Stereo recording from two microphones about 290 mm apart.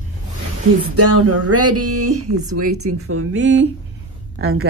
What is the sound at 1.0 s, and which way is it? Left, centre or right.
Speech, right.